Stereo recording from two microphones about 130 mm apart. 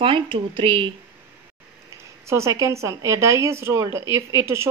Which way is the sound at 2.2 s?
20° right (ahead or behind).